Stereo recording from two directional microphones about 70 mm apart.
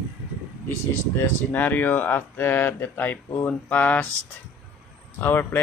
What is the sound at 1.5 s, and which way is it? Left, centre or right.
Speech, left.